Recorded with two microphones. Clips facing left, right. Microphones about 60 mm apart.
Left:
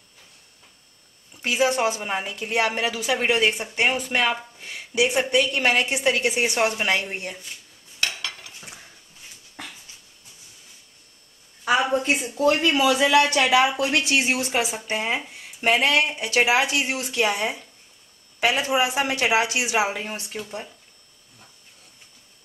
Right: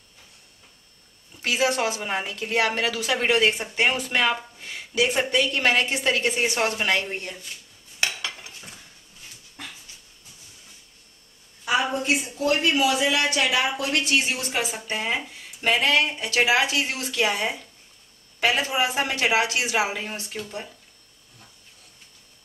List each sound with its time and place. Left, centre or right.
1.4 s a woman's voice: centre
2.0 s a woman's voice: centre
2.2 s speech: centre
8.0 s stir: centre
11.8 s a sound: left
13.0 s a woman's voice: left; by 20.4 s centre